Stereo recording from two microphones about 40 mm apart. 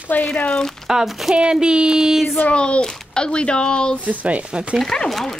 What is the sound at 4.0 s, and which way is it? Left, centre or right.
Speech, right.